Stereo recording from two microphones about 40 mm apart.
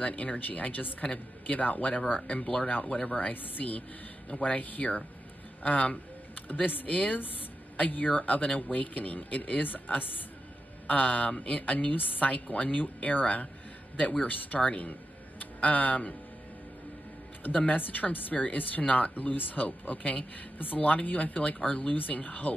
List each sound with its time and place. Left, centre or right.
0.0 s a man's voice: left
17.6 s speech: left
21.9 s speech: left